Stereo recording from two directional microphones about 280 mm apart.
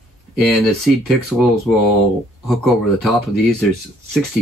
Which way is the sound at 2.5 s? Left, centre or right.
Centre.